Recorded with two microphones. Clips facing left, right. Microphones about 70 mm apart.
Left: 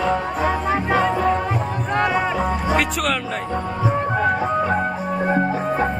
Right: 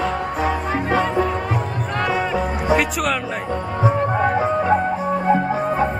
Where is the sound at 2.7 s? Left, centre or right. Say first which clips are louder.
Right 4 dB; centre.